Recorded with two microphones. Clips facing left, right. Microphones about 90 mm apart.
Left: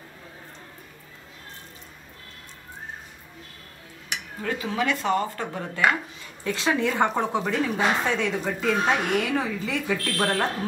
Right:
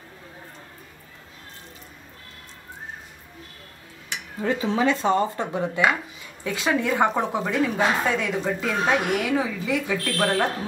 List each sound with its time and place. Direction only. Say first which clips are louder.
4.4 s a woman's voice: right 5 dB; 25° right (ahead or behind); by 10.5 s centre (ahead or behind)